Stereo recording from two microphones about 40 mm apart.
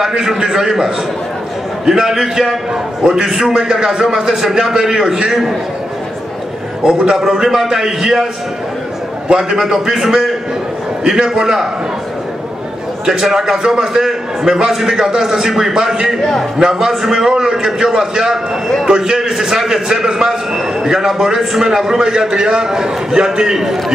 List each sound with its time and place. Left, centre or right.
0.4 s a man's voice: centre
3.3 s a man's voice: centre
7.2 s a man's voice: centre
9.3 s a man's voice: centre
13.0 s a man's voice: centre